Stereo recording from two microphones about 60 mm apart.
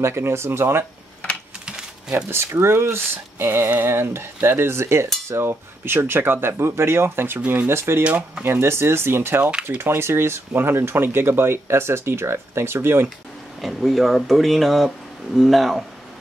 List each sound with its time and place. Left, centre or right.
0.0 s speech: right
2.0 s speech: right
2.3 s speech: right
8.0 s speech: right
8.5 s speech: right
13.6 s speech: centre